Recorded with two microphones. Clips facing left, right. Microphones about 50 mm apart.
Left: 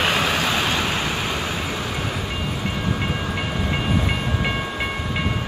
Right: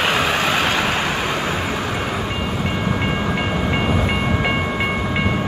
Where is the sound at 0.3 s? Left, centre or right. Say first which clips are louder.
Right 3 dB; right.